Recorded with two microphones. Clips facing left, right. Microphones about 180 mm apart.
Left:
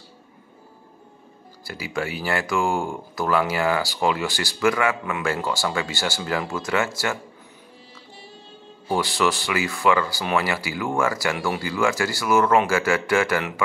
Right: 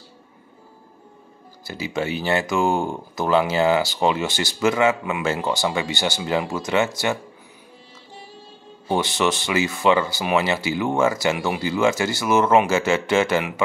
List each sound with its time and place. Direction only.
1.6 s speech: 20° right (ahead or behind)
8.8 s speech: 20° right (ahead or behind)